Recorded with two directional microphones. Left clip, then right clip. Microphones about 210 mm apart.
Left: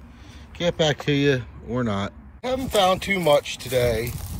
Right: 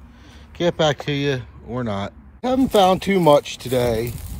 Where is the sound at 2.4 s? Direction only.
25° right (ahead or behind).